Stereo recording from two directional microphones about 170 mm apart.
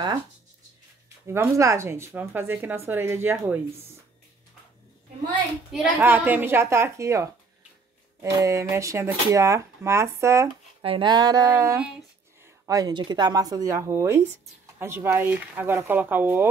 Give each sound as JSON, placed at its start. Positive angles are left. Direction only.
{"t": 1.2, "sound": "speech", "side_deg": -15}
{"t": 5.7, "sound": "speech", "side_deg": -5}
{"t": 10.8, "sound": "speech", "side_deg": -30}